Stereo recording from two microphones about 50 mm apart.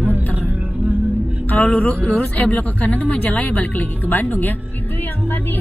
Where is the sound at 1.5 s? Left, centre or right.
Left.